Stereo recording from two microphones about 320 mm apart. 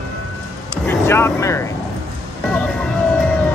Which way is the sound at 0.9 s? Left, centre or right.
Centre.